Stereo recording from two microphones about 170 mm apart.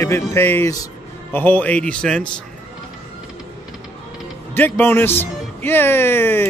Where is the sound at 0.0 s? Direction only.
15° left (ahead or behind).